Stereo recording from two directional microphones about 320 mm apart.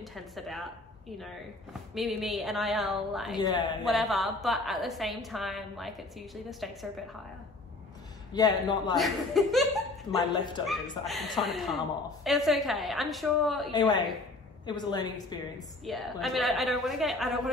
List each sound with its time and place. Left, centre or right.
0.0 s a woman's voice: centre
2.0 s a woman's voice: centre
3.3 s a man's voice: centre
3.8 s a woman's voice: centre
8.3 s a man's voice: centre
8.9 s a woman's voice: centre
10.1 s a man's voice: centre
10.7 s a woman's voice: centre
13.7 s a man's voice: centre
15.8 s a woman's voice: centre